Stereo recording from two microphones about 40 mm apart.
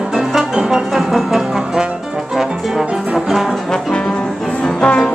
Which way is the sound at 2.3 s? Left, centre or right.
Centre.